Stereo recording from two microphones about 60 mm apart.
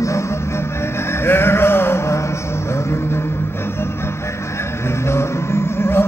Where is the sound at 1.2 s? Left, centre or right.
Left.